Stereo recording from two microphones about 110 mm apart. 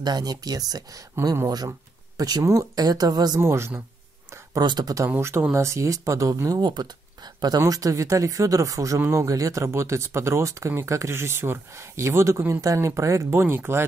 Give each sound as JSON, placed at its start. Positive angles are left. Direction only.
{"t": 0.0, "sound": "speech", "side_deg": -40}
{"t": 1.5, "sound": "speech", "side_deg": -35}
{"t": 3.3, "sound": "speech", "side_deg": -25}
{"t": 4.6, "sound": "speech", "side_deg": -40}
{"t": 5.1, "sound": "speech", "side_deg": -20}
{"t": 6.6, "sound": "speech", "side_deg": -40}